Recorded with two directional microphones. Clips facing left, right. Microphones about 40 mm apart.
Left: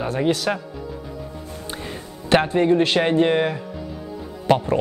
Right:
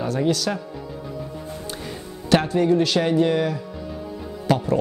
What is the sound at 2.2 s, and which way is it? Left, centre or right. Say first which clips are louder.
Speech: left 2 dB; left.